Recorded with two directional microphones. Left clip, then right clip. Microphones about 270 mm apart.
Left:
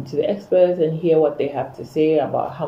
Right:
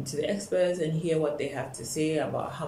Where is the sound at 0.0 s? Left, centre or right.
Centre.